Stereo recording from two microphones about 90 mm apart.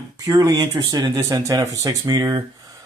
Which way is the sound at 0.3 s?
45° right (ahead or behind).